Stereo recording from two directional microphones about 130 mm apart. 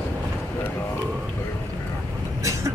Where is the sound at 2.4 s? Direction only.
25° right (ahead or behind).